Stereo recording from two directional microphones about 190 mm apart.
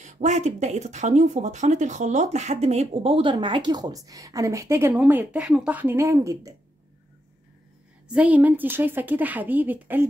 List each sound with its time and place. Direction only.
0.0 s speech: 40° right (ahead or behind); by 6.5 s 15° right (ahead or behind)
8.1 s a woman's voice: 5° right (ahead or behind)